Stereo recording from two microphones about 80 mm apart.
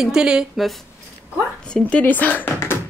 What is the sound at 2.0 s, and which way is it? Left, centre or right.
Speech, left.